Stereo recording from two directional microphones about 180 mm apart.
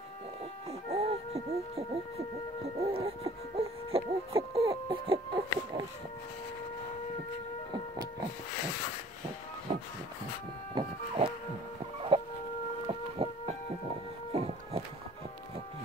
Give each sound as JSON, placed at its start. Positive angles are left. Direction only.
{"t": 0.7, "sound": "music", "side_deg": -35}
{"t": 2.9, "sound": "hoot", "side_deg": -35}
{"t": 10.7, "sound": "a sound", "side_deg": -30}
{"t": 12.1, "sound": "chicken", "side_deg": -30}
{"t": 12.8, "sound": "a sound", "side_deg": -35}
{"t": 14.3, "sound": "music", "side_deg": -35}